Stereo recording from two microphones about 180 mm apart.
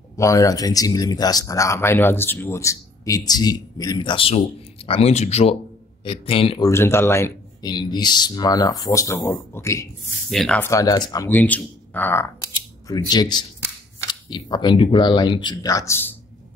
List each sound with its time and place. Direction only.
0.2 s speech: 20° left (ahead or behind)
6.7 s speech: 15° left (ahead or behind)
10.3 s speech: centre (ahead or behind)
10.6 s speech: 20° left (ahead or behind)
12.8 s speech: 20° left (ahead or behind)